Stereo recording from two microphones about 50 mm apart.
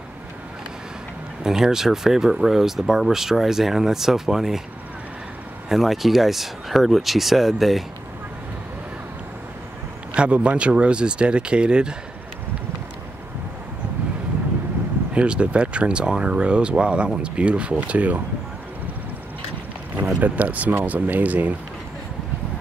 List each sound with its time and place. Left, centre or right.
1.4 s speech: centre
5.7 s speech: centre
10.1 s speech: right
15.1 s speech: right
20.2 s speech: right